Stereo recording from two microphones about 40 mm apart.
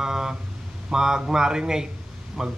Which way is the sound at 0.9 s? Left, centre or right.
Centre.